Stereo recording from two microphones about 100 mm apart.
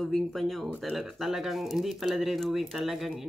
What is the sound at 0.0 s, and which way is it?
Speech, centre (ahead or behind).